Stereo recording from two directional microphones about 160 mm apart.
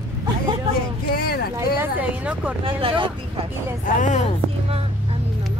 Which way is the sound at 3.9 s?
50° left (ahead or behind).